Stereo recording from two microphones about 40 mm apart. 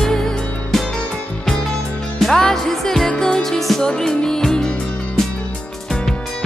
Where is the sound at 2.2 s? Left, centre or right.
Centre.